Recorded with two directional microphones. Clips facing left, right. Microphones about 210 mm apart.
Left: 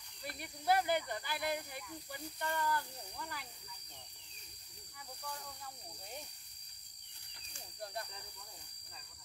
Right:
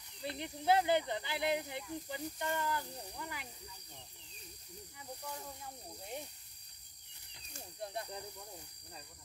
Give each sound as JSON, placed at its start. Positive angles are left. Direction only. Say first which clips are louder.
{"t": 0.2, "sound": "speech", "louder": "right 5 dB", "side_deg": -20}
{"t": 5.2, "sound": "speech", "louder": "right 1 dB", "side_deg": -20}
{"t": 7.8, "sound": "speech", "louder": "right 2 dB", "side_deg": -20}